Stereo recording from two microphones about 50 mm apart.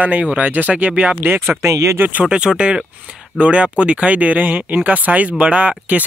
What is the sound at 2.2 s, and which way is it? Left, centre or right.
Speech, centre.